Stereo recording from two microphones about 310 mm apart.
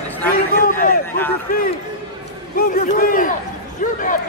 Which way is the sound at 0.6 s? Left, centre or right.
Left.